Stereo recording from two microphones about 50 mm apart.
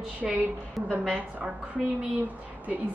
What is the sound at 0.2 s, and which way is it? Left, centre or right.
Speech, centre.